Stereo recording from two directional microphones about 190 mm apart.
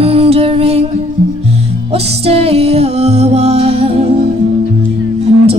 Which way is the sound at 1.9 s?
30° right (ahead or behind).